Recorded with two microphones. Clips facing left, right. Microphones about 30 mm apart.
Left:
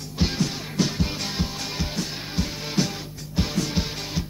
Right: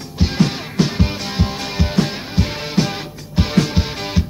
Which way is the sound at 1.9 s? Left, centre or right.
Right.